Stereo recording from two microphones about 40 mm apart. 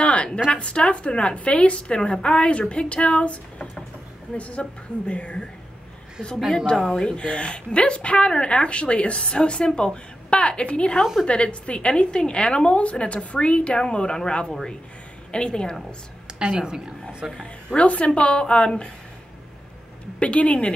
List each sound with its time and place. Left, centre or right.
0.0 s a sound: left
0.5 s speech: left
6.9 s speech: left
15.3 s speech: left
16.3 s a woman's voice: right
17.7 s speech: left
20.2 s a woman's voice: left